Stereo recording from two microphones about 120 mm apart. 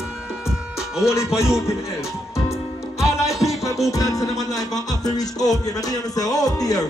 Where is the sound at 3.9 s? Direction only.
30° left (ahead or behind).